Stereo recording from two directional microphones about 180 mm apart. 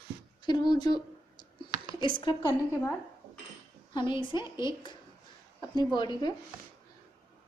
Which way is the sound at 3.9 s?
25° left (ahead or behind).